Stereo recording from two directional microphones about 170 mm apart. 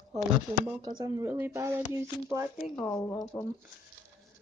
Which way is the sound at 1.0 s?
20° right (ahead or behind).